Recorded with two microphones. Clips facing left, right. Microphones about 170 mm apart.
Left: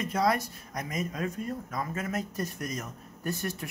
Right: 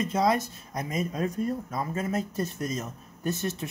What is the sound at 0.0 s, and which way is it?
Speech, 20° right (ahead or behind).